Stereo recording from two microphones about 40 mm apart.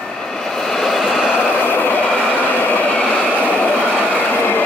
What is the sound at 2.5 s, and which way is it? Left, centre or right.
Vehicle, left.